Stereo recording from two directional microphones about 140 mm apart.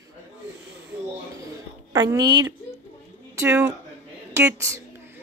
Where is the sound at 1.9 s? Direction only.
25° right (ahead or behind).